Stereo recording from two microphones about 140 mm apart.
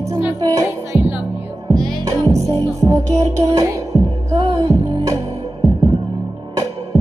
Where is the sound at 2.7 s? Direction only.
25° right (ahead or behind).